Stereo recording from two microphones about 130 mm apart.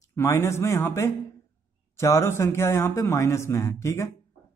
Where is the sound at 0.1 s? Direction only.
20° left (ahead or behind).